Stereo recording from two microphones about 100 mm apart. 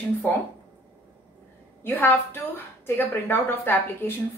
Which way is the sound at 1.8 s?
20° left (ahead or behind).